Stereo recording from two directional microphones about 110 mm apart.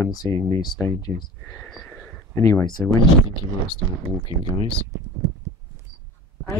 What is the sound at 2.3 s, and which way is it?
Speech, 25° left (ahead or behind).